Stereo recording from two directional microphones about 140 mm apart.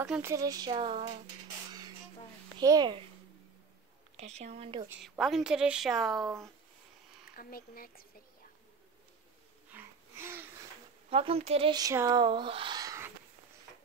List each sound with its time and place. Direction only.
0.2 s speech: 25° right (ahead or behind); by 1.0 s 40° right (ahead or behind)
1.7 s music: 30° right (ahead or behind)
2.6 s speech: 30° right (ahead or behind)
4.2 s speech: 50° right (ahead or behind)
5.0 s a woman's voice: centre (ahead or behind)
6.2 s speech: 20° right (ahead or behind)
7.3 s speech: 90° left
9.7 s a sound: 15° right (ahead or behind)
11.1 s speech: 40° right (ahead or behind)
11.7 s speech: 20° right (ahead or behind)
12.1 s speech: 35° right (ahead or behind)